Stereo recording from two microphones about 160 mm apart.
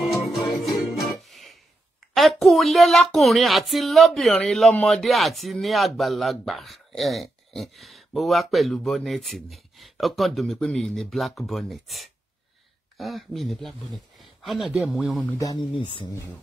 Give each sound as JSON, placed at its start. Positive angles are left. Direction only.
{"t": 0.0, "sound": "music", "side_deg": 0}
{"t": 2.1, "sound": "speech", "side_deg": 0}
{"t": 15.2, "sound": "speech", "side_deg": 20}